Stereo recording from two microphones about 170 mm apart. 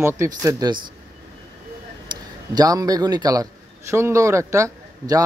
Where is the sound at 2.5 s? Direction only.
20° right (ahead or behind).